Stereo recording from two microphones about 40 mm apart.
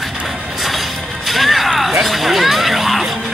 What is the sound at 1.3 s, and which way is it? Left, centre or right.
Music, centre.